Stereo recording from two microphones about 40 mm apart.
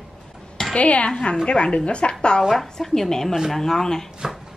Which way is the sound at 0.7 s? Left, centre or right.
Left.